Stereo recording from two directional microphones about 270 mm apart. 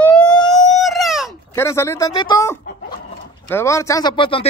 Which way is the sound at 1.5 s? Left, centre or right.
Centre.